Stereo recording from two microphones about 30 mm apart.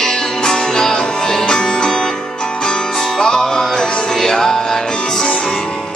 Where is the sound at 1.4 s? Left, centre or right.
Left.